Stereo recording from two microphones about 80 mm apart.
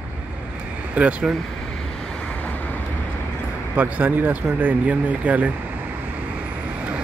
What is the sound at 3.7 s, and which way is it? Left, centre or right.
Speech, right.